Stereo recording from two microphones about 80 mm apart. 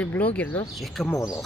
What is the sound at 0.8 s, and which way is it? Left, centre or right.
Speech, centre.